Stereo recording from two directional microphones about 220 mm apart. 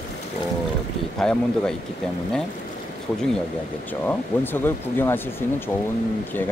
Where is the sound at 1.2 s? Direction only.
5° left (ahead or behind).